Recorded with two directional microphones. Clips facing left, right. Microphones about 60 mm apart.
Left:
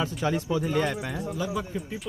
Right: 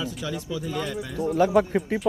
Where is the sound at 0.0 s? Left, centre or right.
Left.